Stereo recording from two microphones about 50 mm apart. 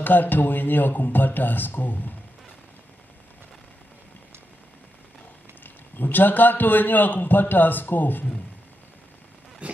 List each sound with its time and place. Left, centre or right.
0.0 s a man's voice: left
5.6 s a man's voice: left
9.6 s zipper: right